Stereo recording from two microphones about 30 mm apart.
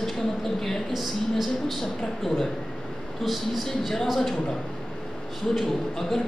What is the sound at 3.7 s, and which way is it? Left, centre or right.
Speech, centre.